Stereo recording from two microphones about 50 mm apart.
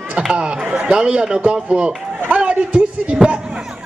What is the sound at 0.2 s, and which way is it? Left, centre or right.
A man's voice, centre.